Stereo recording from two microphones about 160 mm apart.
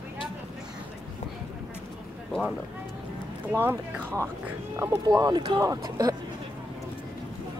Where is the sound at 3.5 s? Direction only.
10° right (ahead or behind).